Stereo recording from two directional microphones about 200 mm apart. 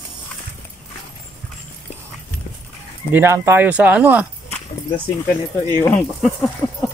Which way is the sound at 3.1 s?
10° right (ahead or behind).